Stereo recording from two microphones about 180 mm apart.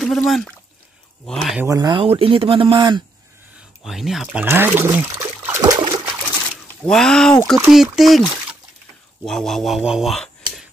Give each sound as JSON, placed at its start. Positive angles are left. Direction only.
{"t": 0.0, "sound": "speech", "side_deg": 0}
{"t": 1.6, "sound": "speech", "side_deg": -20}
{"t": 3.8, "sound": "speech", "side_deg": 0}
{"t": 6.8, "sound": "speech", "side_deg": 5}